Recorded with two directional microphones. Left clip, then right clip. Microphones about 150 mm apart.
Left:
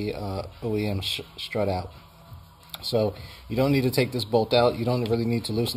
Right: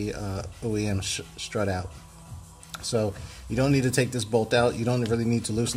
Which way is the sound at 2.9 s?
20° left (ahead or behind).